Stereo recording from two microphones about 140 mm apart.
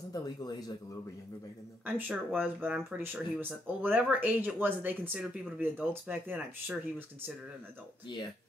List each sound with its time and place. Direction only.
0.1 s speech: 30° left (ahead or behind)
1.9 s speech: 15° right (ahead or behind)